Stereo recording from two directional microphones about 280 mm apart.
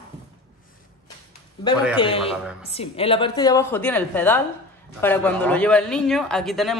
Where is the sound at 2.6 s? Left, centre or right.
Left.